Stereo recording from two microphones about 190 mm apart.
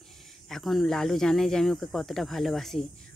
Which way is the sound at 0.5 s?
Centre (ahead or behind).